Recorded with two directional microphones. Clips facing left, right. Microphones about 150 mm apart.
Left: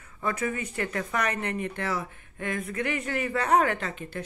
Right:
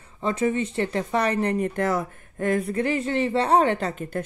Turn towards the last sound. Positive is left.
turn(degrees=-40)  # may be behind; listen again after turning